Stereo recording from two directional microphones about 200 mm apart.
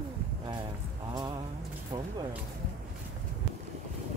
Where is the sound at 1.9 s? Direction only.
25° right (ahead or behind).